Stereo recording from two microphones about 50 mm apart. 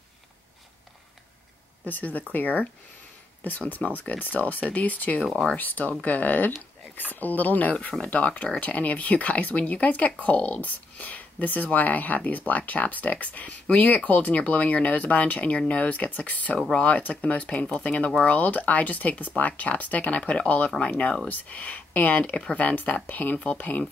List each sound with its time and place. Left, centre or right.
1.9 s speech: left
3.4 s speech: left
23.3 s speech: left